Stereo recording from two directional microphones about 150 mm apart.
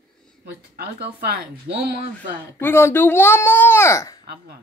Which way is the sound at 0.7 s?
90° right.